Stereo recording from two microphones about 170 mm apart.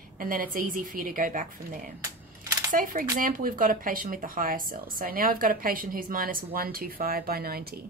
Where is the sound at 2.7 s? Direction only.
55° right (ahead or behind).